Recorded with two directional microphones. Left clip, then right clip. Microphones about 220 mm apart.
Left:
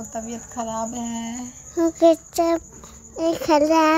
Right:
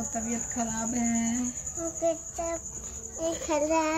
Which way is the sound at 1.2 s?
35° left (ahead or behind).